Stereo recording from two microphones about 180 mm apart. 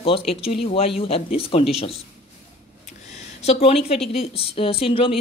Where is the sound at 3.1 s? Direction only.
35° left (ahead or behind).